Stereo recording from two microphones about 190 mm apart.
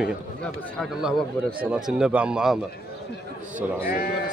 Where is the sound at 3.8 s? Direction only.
50° left (ahead or behind).